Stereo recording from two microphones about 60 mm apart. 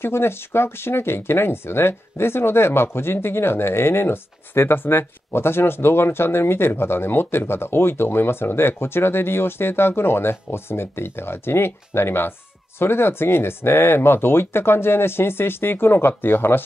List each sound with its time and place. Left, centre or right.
0.0 s speech: left